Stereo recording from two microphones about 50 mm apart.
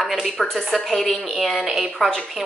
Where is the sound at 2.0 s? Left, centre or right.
Centre.